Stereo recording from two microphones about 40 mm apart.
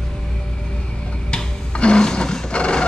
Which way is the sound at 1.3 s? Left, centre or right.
Left.